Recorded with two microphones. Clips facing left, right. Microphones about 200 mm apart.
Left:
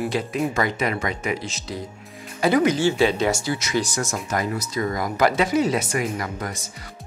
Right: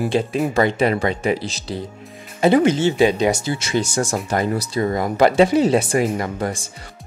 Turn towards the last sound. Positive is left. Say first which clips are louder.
# right 6 dB
turn(degrees=-30)  # may be behind; listen again after turning